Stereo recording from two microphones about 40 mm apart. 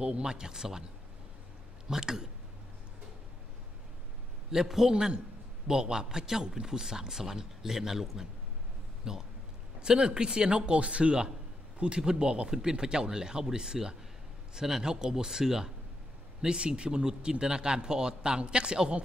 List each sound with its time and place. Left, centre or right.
0.0 s a man's voice: right
1.9 s a man's voice: centre
4.5 s a man's voice: centre
4.9 s a man's voice: right